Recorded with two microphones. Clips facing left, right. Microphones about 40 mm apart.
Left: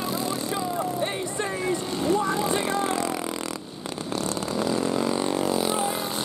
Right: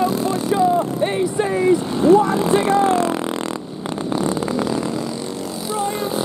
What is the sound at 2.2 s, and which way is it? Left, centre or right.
Speech, centre.